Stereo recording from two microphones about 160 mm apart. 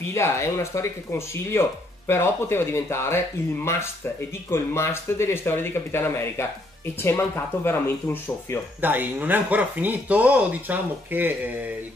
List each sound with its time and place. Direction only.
0.1 s speech: 15° left (ahead or behind)
4.5 s speech: 15° left (ahead or behind)
8.8 s speech: 10° right (ahead or behind)